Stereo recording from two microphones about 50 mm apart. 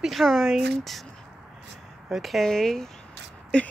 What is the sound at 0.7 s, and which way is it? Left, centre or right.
Speech, centre.